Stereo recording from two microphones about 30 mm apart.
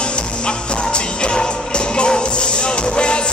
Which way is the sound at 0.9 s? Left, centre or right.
Left.